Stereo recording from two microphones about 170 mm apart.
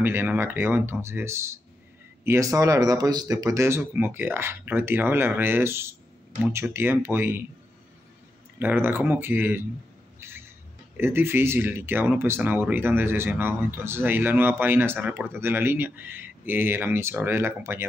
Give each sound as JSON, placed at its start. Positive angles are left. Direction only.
{"t": 0.0, "sound": "speech", "side_deg": -10}
{"t": 8.5, "sound": "speech", "side_deg": -10}